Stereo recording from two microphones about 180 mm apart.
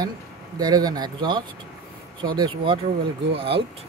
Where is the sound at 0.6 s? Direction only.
25° right (ahead or behind).